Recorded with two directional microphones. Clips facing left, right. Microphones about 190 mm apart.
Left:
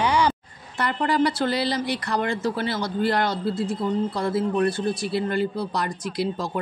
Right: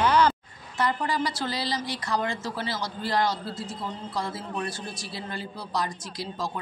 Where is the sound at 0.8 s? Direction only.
60° left (ahead or behind).